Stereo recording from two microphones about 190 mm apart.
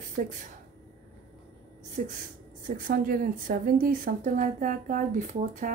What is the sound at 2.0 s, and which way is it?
A woman's voice, 45° right (ahead or behind).